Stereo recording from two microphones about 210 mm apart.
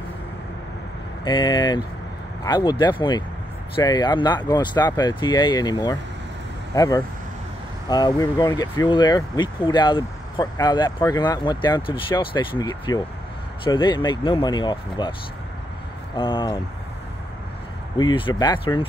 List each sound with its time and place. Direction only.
1.2 s speech: 20° left (ahead or behind)
16.2 s speech: 25° left (ahead or behind)
17.9 s speech: 20° left (ahead or behind)